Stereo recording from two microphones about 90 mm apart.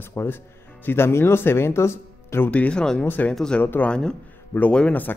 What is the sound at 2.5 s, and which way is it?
Speech, 15° left (ahead or behind).